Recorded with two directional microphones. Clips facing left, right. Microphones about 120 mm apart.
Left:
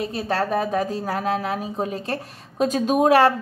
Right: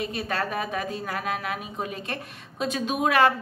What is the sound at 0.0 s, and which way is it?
A woman's voice, 30° left (ahead or behind).